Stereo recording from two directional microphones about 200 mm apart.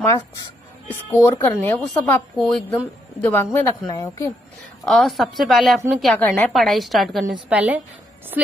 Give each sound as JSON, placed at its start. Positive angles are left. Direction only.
{"t": 0.8, "sound": "a woman's voice", "side_deg": 10}
{"t": 4.8, "sound": "a woman's voice", "side_deg": 0}